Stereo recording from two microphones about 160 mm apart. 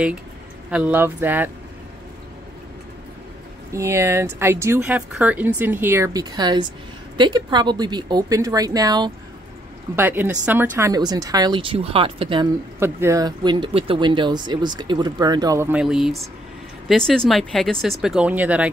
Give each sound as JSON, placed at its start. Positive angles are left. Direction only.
{"t": 0.7, "sound": "speech", "side_deg": -5}
{"t": 3.7, "sound": "speech", "side_deg": -15}
{"t": 9.9, "sound": "speech", "side_deg": -15}
{"t": 10.9, "sound": "speech", "side_deg": -25}
{"t": 12.7, "sound": "speech", "side_deg": -15}
{"t": 15.7, "sound": "speech", "side_deg": -5}